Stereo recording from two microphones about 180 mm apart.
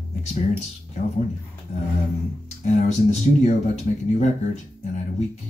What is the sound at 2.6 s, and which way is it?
Speech, 40° left (ahead or behind).